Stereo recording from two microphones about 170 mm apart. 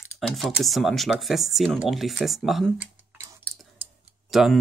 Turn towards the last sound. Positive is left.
turn(degrees=0)  # may be behind; listen again after turning